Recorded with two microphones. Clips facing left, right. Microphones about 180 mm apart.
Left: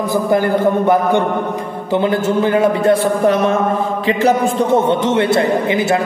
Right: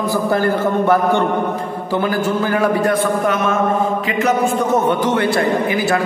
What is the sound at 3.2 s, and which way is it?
A man's voice, 35° left (ahead or behind).